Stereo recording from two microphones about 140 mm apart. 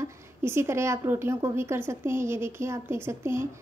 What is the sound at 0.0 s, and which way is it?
A woman's voice, 20° right (ahead or behind).